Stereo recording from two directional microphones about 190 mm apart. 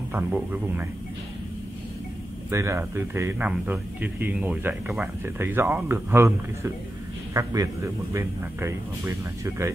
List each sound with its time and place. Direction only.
0.1 s speech: 10° right (ahead or behind)
2.5 s speech: 15° right (ahead or behind)